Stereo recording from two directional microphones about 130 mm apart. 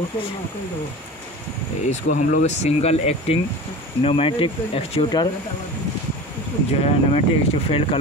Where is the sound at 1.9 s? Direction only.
65° left (ahead or behind); by 5.0 s 45° left (ahead or behind).